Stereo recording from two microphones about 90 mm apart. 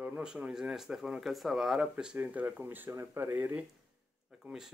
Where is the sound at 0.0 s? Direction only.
10° right (ahead or behind).